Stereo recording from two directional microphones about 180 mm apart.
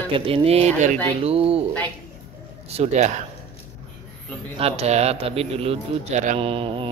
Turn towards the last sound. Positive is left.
turn(degrees=-30)  # may be behind; listen again after turning